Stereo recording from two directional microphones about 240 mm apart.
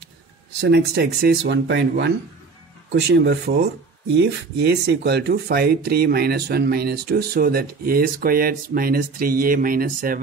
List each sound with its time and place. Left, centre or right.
0.6 s speech: right